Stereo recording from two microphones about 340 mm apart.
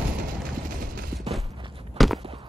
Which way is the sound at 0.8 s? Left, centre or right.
Right.